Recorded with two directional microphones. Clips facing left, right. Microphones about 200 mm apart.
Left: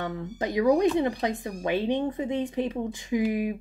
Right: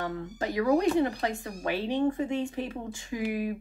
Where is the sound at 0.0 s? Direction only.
20° left (ahead or behind).